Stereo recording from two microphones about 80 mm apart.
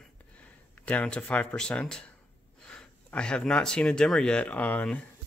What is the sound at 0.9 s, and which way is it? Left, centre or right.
Speech, centre.